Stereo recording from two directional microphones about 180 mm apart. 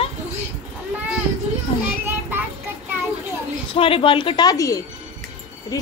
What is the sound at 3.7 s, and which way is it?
A woman's voice, 30° left (ahead or behind).